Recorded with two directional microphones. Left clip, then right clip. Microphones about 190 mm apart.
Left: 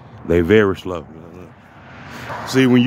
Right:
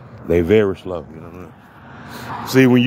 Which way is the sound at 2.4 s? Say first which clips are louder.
Right 2 dB; 10° right (ahead or behind).